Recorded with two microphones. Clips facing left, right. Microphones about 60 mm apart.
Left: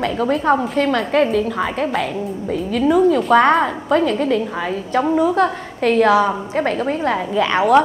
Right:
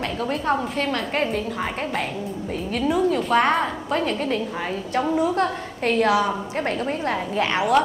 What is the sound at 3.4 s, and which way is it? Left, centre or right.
A woman's voice, left.